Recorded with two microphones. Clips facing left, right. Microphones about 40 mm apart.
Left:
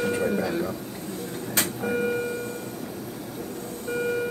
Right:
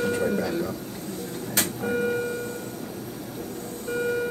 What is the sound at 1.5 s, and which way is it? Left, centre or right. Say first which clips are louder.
Printer: even; left.